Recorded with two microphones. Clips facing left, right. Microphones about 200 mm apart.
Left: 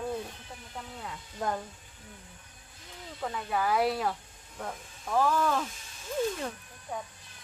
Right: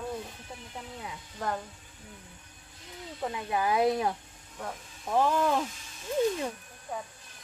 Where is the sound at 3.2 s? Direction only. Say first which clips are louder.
Right 1 dB; 15° right (ahead or behind).